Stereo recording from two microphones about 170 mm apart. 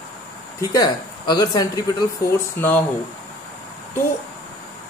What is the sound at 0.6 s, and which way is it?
Speech, 25° left (ahead or behind).